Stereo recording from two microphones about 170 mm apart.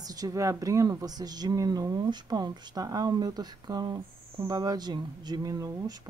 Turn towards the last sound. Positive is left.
turn(degrees=-25)  # may be behind; listen again after turning